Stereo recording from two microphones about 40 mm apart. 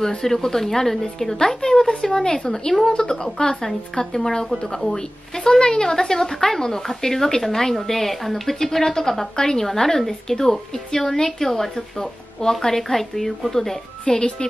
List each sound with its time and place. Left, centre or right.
0.0 s speech: centre
14.0 s speech: left